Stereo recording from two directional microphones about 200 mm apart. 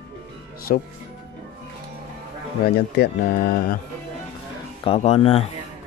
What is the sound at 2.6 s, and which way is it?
Speech, 55° left (ahead or behind).